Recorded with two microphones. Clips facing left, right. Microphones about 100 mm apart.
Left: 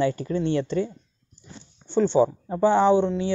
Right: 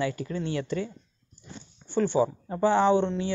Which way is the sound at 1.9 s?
20° left (ahead or behind).